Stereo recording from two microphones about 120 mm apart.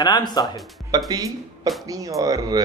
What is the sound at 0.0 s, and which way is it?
Speech, 35° left (ahead or behind).